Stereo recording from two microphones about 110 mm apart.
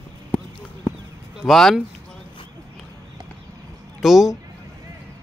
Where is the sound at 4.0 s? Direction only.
5° right (ahead or behind).